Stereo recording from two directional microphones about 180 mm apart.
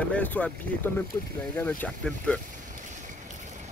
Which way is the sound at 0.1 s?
10° left (ahead or behind).